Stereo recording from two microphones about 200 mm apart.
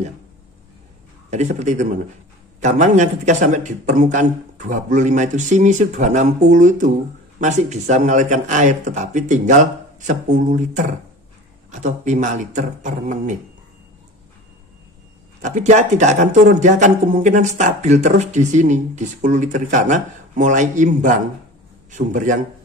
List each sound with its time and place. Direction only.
1.3 s speech: 35° right (ahead or behind)
15.4 s speech: 35° right (ahead or behind)